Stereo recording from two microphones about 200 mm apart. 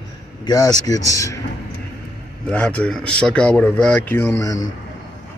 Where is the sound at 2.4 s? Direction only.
5° left (ahead or behind).